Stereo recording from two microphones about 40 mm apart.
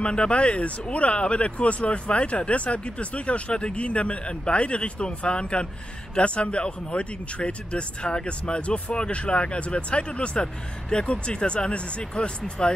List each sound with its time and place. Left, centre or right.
0.0 s speech: left